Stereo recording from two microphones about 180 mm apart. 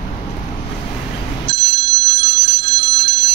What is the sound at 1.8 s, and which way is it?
Bicycle bell, 65° right (ahead or behind).